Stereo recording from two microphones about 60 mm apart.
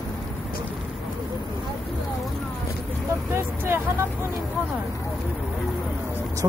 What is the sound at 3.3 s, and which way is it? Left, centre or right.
Vehicle, right.